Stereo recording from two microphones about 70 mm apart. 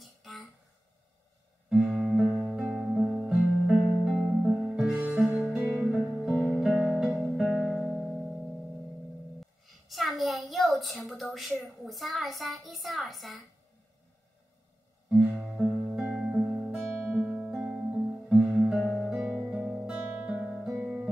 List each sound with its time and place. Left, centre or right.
0.0 s a sound: centre
2.0 s music: centre
4.9 s music: right
5.9 s music: centre
9.4 s a sound: centre
15.0 s music: centre
17.2 s music: centre
18.5 s music: centre
18.9 s guitar: centre
19.2 s music: right
19.5 s guitar: centre
20.4 s guitar: centre